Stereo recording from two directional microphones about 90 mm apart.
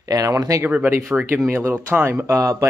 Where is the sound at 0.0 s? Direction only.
40° right (ahead or behind).